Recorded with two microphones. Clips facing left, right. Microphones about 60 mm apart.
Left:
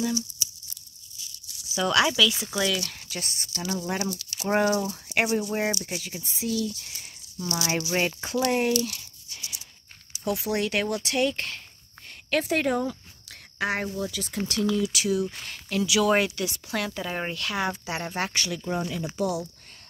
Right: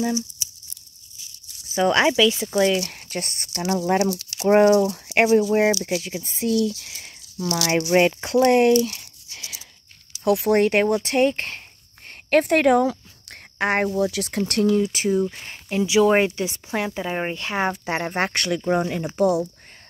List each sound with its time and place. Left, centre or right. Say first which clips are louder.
1.7 s speech: right 5 dB; right
2.9 s speech: right 5 dB; right
4.0 s speech: right 8 dB; right
4.6 s speech: right 9 dB; right
5.7 s speech: right 8 dB; right
6.2 s speech: right 6 dB; right
7.7 s speech: right 10 dB; right
10.2 s speech: right 9 dB; right
10.5 s speech: right 9 dB; right
12.3 s speech: right 8 dB; right
14.1 s speech: right 7 dB; right
14.5 s speech: right 6 dB; right
15.4 s speech: right 4 dB; right